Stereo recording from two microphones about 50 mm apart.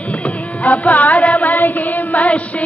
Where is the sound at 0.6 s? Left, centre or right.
Left.